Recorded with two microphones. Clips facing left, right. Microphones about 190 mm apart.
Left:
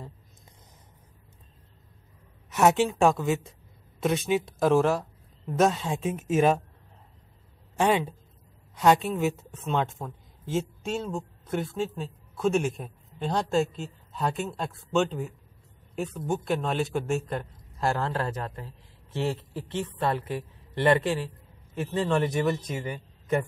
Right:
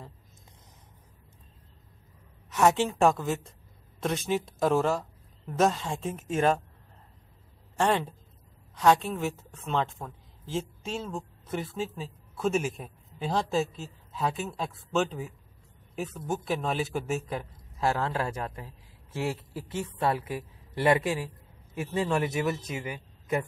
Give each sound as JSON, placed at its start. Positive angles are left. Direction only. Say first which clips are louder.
{"t": 2.5, "sound": "speech", "louder": "left 2 dB", "side_deg": 5}
{"t": 7.7, "sound": "a woman's voice", "louder": "left 2 dB", "side_deg": 5}